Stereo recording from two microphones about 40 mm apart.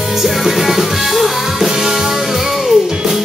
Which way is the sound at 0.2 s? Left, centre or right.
Centre.